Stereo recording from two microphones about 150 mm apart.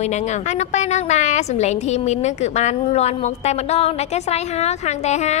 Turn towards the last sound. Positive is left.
turn(degrees=50)  # may be behind; listen again after turning